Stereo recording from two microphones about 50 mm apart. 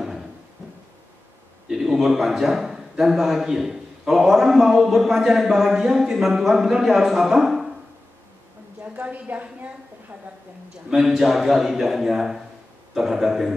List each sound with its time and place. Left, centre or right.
1.7 s a man's voice: centre
8.8 s a woman's voice: right
10.9 s a man's voice: centre